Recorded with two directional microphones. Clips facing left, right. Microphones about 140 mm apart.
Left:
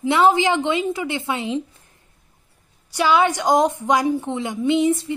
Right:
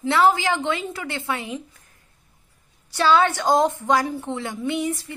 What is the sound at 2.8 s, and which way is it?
A woman's voice, 15° left (ahead or behind).